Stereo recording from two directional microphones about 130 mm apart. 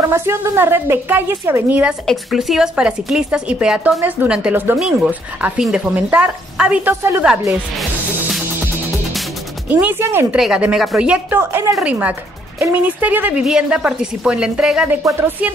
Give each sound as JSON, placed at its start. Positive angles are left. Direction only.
{"t": 0.1, "sound": "speech", "side_deg": -20}
{"t": 9.7, "sound": "speech", "side_deg": -15}
{"t": 15.0, "sound": "speech", "side_deg": -15}